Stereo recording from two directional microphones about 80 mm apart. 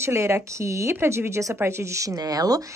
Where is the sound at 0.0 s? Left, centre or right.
Right.